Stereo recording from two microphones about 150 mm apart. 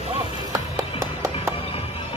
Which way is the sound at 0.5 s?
20° right (ahead or behind).